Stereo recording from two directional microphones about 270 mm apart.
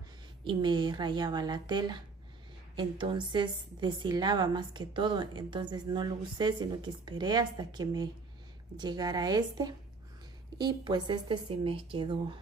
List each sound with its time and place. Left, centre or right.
0.4 s a woman's voice: centre